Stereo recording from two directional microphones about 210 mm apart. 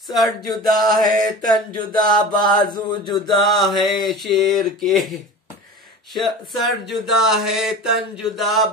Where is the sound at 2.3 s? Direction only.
20° left (ahead or behind).